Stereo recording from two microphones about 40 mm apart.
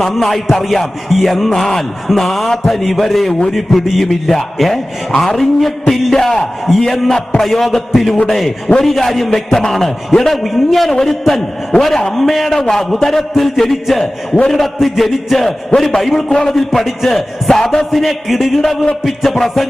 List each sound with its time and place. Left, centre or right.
0.1 s speech: centre
4.1 s a man's voice: centre
15.7 s a man's voice: left
16.2 s a man's voice: centre
16.5 s speech: centre
17.9 s speech: centre